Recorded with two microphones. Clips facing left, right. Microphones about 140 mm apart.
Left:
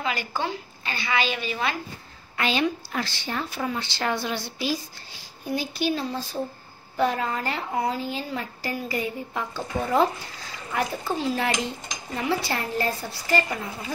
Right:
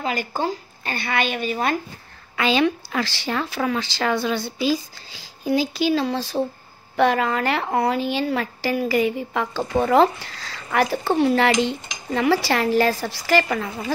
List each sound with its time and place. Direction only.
0.0 s a woman's voice: 45° right (ahead or behind)
2.6 s a woman's voice: 90° right
5.1 s a woman's voice: 90° right